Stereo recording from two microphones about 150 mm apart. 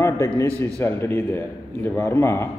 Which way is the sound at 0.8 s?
15° left (ahead or behind).